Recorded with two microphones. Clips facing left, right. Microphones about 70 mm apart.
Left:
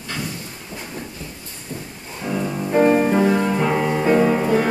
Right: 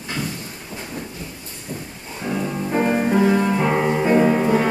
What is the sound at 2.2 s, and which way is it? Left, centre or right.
Music, centre.